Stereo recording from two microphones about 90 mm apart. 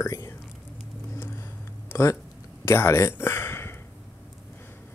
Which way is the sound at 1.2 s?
25° left (ahead or behind).